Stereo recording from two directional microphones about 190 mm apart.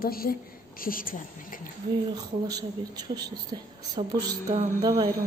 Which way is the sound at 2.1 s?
20° right (ahead or behind).